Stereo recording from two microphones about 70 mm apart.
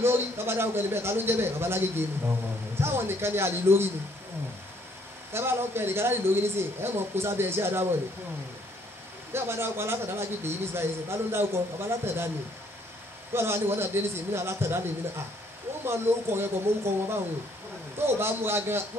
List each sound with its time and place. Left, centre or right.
0.0 s a man's voice: right
5.3 s a man's voice: right
9.3 s a man's voice: right
13.3 s a man's voice: right
15.8 s a man's voice: right